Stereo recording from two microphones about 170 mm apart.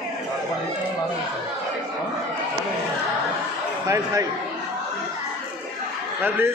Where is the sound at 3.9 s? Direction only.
20° right (ahead or behind).